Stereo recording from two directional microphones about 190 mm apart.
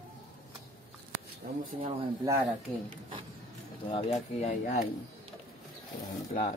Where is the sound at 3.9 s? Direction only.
35° left (ahead or behind).